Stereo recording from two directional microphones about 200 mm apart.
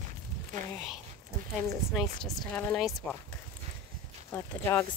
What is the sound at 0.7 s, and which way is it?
Speech, centre (ahead or behind).